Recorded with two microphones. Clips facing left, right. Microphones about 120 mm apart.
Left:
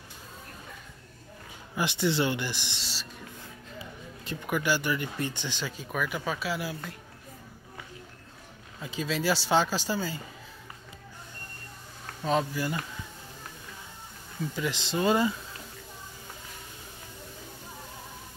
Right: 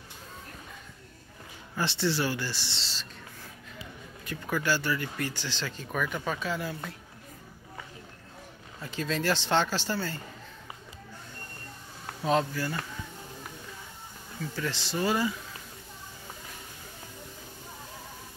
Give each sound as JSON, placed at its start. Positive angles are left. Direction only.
{"t": 1.8, "sound": "speech", "side_deg": 15}
{"t": 4.5, "sound": "speech", "side_deg": 15}
{"t": 8.8, "sound": "speech", "side_deg": 10}
{"t": 12.2, "sound": "speech", "side_deg": 0}
{"t": 12.5, "sound": "speech", "side_deg": 15}
{"t": 14.5, "sound": "speech", "side_deg": 15}